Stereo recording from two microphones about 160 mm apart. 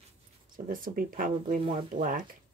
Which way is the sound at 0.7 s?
60° right (ahead or behind).